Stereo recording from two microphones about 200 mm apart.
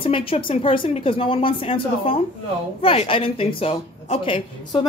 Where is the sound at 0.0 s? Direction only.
25° left (ahead or behind).